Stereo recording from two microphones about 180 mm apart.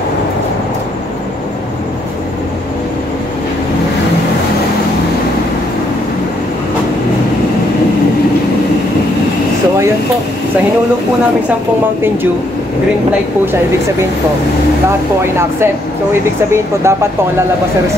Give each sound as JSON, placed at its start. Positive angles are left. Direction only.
{"t": 15.6, "sound": "speech", "side_deg": -15}